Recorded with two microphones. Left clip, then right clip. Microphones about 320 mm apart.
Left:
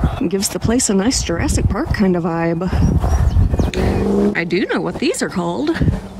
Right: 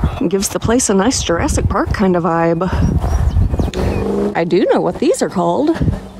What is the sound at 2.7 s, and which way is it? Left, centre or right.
Horse, left.